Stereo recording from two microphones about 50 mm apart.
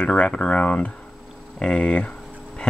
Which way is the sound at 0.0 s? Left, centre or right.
Left.